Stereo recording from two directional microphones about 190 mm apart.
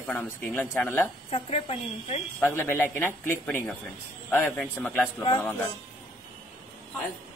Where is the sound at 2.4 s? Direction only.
10° left (ahead or behind).